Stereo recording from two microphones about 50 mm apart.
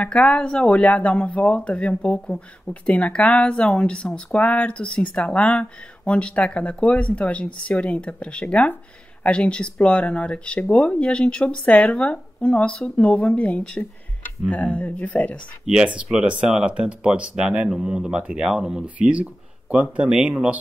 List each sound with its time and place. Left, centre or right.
0.0 s speech: left
15.6 s speech: centre